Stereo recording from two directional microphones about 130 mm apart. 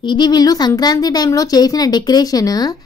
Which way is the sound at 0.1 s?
35° left (ahead or behind).